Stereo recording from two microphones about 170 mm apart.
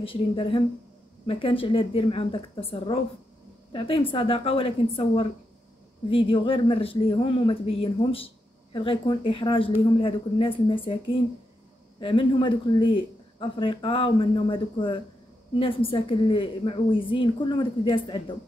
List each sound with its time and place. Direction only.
0.0 s speech: 30° left (ahead or behind)
12.0 s speech: 30° left (ahead or behind)